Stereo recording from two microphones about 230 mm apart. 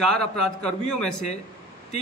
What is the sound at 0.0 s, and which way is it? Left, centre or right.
A man's voice, centre.